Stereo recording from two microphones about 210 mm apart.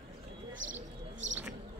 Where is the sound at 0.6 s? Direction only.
65° right (ahead or behind).